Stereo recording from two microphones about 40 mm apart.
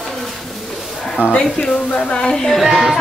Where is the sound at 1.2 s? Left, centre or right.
Right.